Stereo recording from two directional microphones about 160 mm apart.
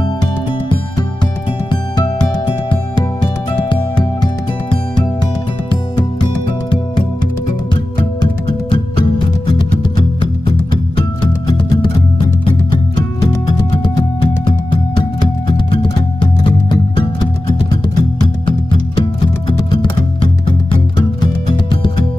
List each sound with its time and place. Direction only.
1.7 s music: 25° left (ahead or behind)
5.7 s music: 30° left (ahead or behind)
11.0 s music: 30° left (ahead or behind)
13.2 s music: 25° left (ahead or behind)